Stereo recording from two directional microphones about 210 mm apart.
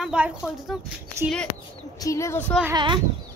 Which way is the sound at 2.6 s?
20° right (ahead or behind).